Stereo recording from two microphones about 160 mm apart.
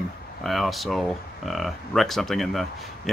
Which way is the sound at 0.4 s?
Centre (ahead or behind).